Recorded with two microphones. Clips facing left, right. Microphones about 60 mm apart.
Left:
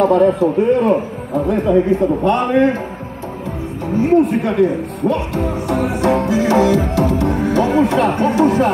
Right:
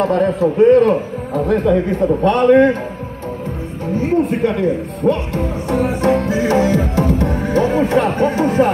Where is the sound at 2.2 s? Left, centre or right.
Right.